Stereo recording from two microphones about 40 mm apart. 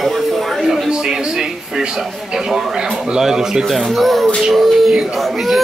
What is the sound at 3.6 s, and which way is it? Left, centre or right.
A man's voice, centre.